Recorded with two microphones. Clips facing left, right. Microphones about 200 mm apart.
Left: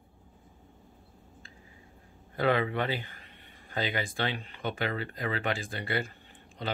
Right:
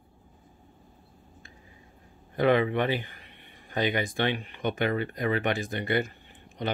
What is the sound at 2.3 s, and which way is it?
Speech, 20° right (ahead or behind).